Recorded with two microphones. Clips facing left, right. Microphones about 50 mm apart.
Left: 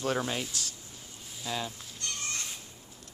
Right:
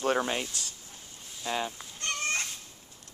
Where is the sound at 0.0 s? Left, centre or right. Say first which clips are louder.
Right 3 dB; centre.